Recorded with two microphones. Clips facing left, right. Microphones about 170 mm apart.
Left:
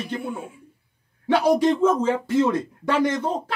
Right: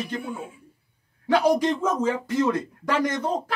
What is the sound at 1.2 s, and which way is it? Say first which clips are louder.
Speech: left 2 dB; 30° left (ahead or behind).